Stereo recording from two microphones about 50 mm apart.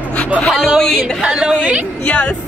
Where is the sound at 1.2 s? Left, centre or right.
Centre.